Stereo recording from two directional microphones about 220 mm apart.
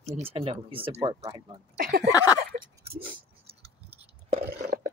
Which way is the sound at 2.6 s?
25° right (ahead or behind).